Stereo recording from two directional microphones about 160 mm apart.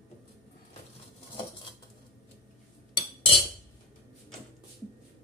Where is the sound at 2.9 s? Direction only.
35° left (ahead or behind).